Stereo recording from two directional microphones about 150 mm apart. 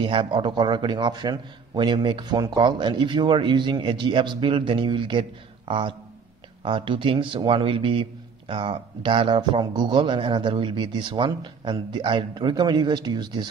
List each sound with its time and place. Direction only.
0.0 s a man's voice: 35° right (ahead or behind)